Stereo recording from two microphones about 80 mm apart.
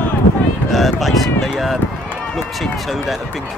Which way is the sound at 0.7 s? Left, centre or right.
Centre.